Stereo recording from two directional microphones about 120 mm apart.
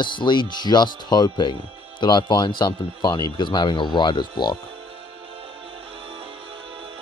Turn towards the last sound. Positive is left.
turn(degrees=-45)  # may be behind; listen again after turning